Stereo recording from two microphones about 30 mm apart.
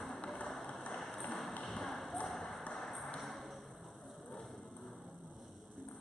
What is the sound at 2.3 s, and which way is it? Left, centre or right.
Ping, centre.